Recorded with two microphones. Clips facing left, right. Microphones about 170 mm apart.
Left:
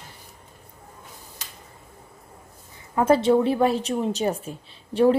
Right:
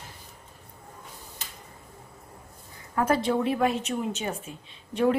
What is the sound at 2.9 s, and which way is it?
A woman's voice, 25° left (ahead or behind).